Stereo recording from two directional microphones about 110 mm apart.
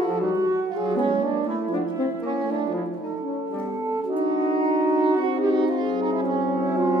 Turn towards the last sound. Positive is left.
turn(degrees=-45)  # may be behind; listen again after turning